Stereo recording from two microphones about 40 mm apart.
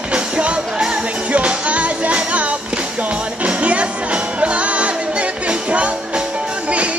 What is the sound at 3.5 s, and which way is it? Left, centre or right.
Music, right.